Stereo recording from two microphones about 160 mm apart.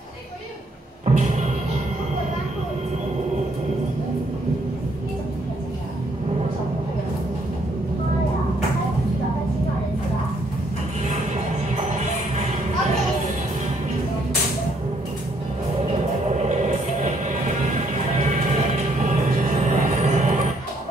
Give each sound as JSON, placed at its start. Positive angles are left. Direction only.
{"t": 1.0, "sound": "music", "side_deg": -50}
{"t": 11.7, "sound": "music", "side_deg": -45}
{"t": 16.4, "sound": "music", "side_deg": -50}
{"t": 18.2, "sound": "vehicle", "side_deg": -45}